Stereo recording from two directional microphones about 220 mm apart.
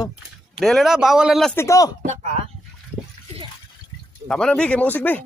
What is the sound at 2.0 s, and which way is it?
Speech, 30° right (ahead or behind).